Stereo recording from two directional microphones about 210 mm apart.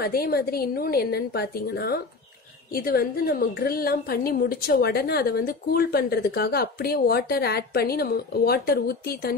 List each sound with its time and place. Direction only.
0.0 s a woman's voice: 45° left (ahead or behind)